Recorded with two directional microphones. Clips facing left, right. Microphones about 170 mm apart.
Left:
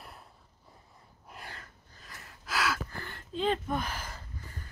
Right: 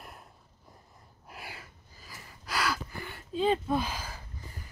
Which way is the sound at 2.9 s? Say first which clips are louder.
Right 2 dB; 10° right (ahead or behind).